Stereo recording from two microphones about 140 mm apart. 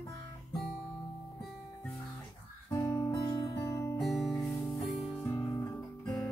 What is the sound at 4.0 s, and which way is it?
Music, centre (ahead or behind).